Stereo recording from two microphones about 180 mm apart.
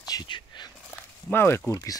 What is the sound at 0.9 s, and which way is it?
Speech, 15° left (ahead or behind).